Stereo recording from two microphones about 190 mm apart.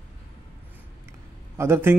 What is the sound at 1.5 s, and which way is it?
Speech, 10° right (ahead or behind).